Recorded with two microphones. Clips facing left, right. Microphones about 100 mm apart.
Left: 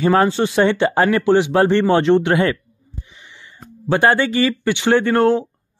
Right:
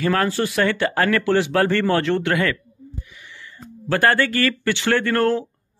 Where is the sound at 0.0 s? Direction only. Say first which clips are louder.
Left 5 dB; 25° left (ahead or behind).